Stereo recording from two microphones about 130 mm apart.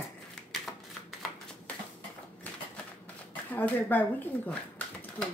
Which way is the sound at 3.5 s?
15° left (ahead or behind).